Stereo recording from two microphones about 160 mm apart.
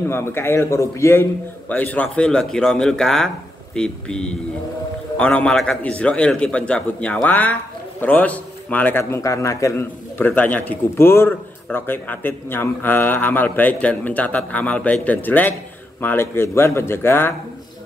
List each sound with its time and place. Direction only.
0.1 s a man's voice: 15° left (ahead or behind)